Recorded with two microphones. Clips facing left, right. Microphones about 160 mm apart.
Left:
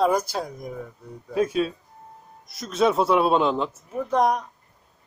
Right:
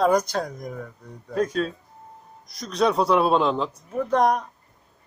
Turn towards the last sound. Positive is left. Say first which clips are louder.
# right 1 dB
turn(degrees=0)  # may be behind; listen again after turning